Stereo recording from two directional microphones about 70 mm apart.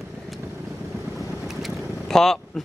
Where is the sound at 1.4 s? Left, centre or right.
Centre.